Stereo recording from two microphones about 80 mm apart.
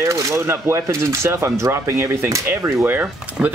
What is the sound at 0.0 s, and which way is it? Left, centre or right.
Speech, right.